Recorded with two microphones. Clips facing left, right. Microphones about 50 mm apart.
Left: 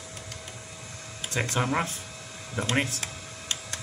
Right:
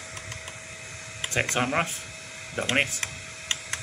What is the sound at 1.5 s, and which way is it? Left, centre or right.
Speech, right.